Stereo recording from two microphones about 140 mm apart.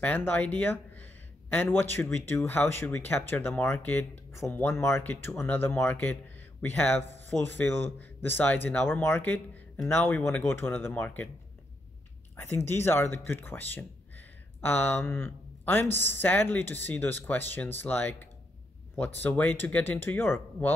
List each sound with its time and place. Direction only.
0.0 s speech: 10° left (ahead or behind)
12.4 s speech: 20° left (ahead or behind)